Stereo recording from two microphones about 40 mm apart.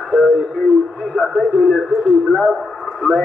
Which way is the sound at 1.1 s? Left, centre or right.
Centre.